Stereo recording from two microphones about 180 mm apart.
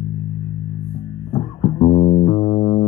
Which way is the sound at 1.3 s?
30° left (ahead or behind).